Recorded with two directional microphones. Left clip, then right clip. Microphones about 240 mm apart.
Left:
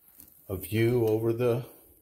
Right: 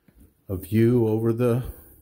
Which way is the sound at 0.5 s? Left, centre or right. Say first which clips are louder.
Right 5 dB; right.